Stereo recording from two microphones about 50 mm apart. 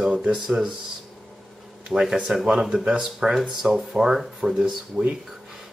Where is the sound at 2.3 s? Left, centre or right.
Centre.